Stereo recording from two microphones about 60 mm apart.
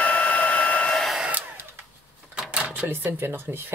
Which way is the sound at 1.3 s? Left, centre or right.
Right.